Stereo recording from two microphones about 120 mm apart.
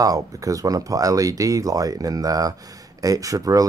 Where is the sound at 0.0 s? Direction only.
30° right (ahead or behind).